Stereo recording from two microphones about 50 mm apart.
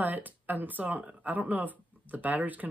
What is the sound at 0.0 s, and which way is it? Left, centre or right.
Speech, right.